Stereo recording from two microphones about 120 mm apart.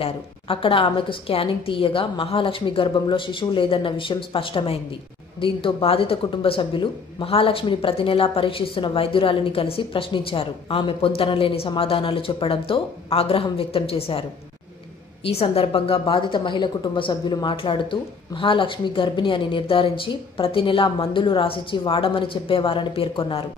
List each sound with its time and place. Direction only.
0.0 s speech: 50° left (ahead or behind)
15.2 s speech: 50° left (ahead or behind)